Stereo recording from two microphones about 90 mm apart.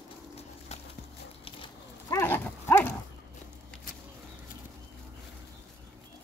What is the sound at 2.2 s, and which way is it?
Livestock, 20° left (ahead or behind).